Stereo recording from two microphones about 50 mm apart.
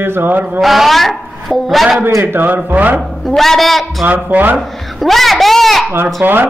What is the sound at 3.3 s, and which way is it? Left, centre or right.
Speech, centre.